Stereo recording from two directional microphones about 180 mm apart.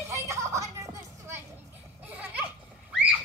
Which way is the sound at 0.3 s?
15° right (ahead or behind).